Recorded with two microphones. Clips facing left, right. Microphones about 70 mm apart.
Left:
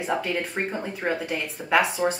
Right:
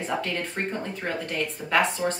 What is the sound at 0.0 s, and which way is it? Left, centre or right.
Speech, centre.